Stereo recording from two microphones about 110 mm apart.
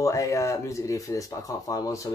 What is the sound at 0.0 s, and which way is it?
Speech, 30° left (ahead or behind).